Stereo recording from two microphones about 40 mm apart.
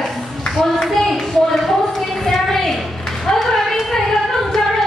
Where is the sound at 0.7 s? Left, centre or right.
Centre.